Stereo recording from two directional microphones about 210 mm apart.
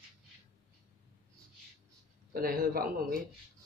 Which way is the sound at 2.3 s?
45° right (ahead or behind).